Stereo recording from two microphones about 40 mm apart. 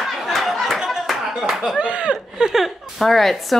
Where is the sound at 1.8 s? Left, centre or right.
Right.